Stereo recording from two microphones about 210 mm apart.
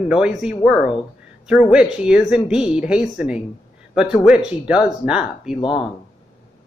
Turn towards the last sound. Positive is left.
turn(degrees=25)  # may be behind; listen again after turning